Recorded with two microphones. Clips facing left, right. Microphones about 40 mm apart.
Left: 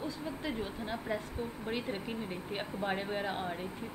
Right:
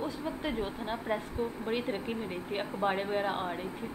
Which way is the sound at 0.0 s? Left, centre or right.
Right.